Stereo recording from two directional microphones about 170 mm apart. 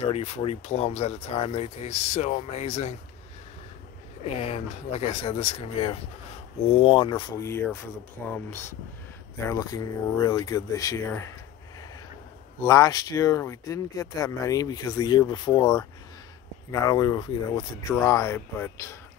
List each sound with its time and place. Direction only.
0.0 s speech: 40° left (ahead or behind)
4.2 s speech: 40° left (ahead or behind); by 11.3 s 15° left (ahead or behind)
12.6 s speech: 20° left (ahead or behind)